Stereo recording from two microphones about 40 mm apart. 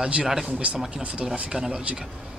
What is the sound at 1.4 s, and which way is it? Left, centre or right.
Speech, centre.